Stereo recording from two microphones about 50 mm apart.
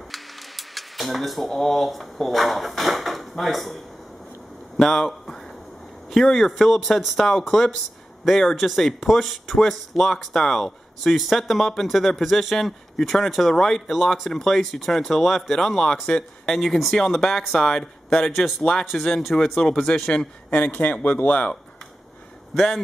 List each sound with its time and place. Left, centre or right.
0.1 s speech: centre
7.2 s speech: centre
16.5 s speech: centre
20.4 s speech: left
22.5 s speech: centre